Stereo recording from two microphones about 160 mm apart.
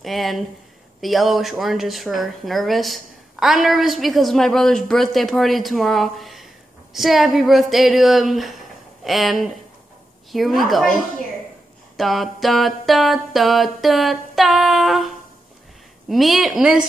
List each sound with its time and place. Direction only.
0.0 s a woman's voice: centre (ahead or behind)
12.0 s a woman's voice: centre (ahead or behind)